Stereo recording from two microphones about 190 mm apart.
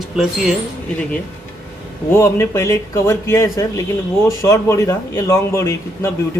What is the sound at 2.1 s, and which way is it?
Speech, 15° left (ahead or behind).